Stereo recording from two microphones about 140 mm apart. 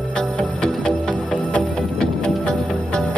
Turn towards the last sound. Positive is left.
turn(degrees=5)  # may be behind; listen again after turning